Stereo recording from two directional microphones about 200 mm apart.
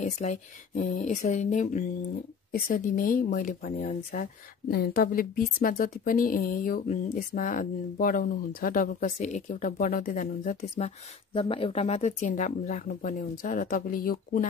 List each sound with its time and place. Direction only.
0.0 s speech: 35° left (ahead or behind)
11.3 s speech: 25° left (ahead or behind); by 14.5 s 45° left (ahead or behind)